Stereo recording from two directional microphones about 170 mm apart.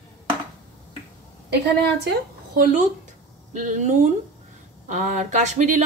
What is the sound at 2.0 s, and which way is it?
A woman's voice, 60° right (ahead or behind).